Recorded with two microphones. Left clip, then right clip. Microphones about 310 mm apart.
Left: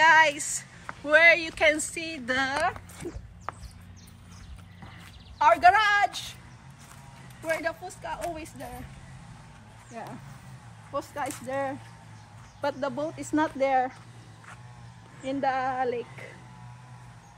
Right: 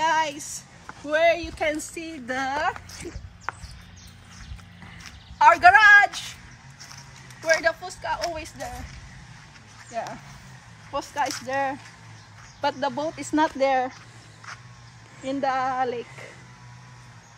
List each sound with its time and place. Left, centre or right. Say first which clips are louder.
0.0 s speech: left 4 dB; centre
5.4 s a man's voice: right 5 dB; centre
7.4 s speech: right 8 dB; centre
10.9 s speech: right 5 dB; right
15.2 s speech: right 3 dB; right